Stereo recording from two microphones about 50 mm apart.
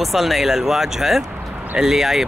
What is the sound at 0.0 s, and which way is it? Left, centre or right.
Speech, centre.